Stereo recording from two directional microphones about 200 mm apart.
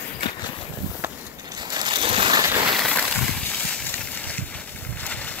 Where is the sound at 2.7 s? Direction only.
Centre (ahead or behind).